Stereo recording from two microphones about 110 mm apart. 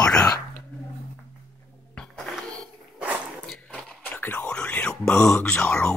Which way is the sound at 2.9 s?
15° right (ahead or behind).